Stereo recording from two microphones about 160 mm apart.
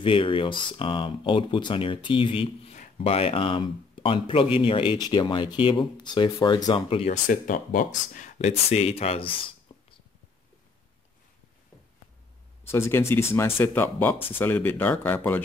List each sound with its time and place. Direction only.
0.0 s speech: 35° left (ahead or behind)
7.2 s speech: 55° left (ahead or behind); by 9.9 s 35° left (ahead or behind)
12.6 s speech: 15° left (ahead or behind)